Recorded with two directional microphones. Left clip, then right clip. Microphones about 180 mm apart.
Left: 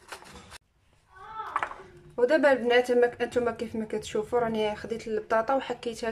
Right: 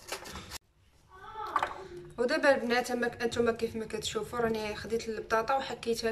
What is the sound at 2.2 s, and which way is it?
A woman's voice, 45° left (ahead or behind).